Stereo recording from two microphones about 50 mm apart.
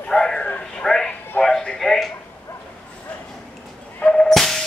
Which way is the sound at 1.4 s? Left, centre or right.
Centre.